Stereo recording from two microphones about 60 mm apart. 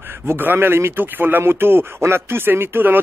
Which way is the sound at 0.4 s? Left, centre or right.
Right.